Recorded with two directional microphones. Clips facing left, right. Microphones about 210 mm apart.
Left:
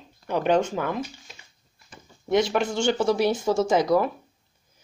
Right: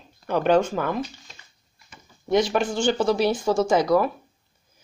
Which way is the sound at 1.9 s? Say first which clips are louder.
Right 1 dB; 25° left (ahead or behind).